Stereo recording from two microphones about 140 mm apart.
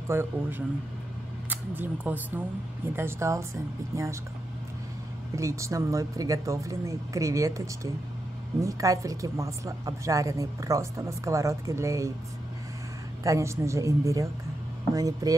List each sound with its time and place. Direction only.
0.1 s a man's voice: 15° right (ahead or behind)
5.3 s a woman's voice: 20° right (ahead or behind)
13.2 s a woman's voice: 20° right (ahead or behind)